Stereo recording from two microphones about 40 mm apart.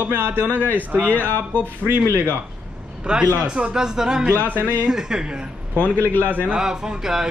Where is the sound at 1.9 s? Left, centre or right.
Right.